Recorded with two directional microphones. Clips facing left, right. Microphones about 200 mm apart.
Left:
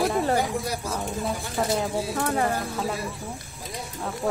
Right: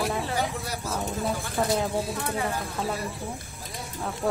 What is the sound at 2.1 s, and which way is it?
Speech, 55° left (ahead or behind).